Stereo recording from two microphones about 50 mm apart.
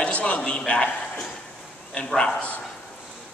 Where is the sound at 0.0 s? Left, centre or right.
Left.